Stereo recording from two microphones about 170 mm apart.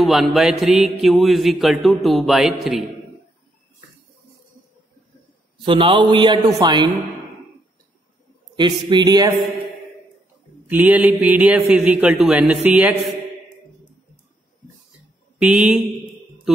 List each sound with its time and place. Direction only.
0.0 s speech: centre (ahead or behind)
5.7 s a man's voice: 30° right (ahead or behind)
8.5 s a man's voice: 25° right (ahead or behind)
10.7 s speech: 10° right (ahead or behind)
15.3 s speech: 5° right (ahead or behind)